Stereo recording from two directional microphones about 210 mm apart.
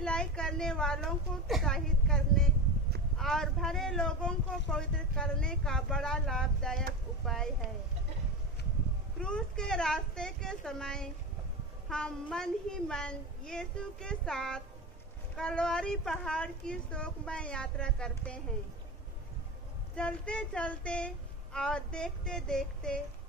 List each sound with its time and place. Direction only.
0.0 s speech: 5° left (ahead or behind)
9.2 s speech: 5° left (ahead or behind)
20.0 s speech: 5° left (ahead or behind)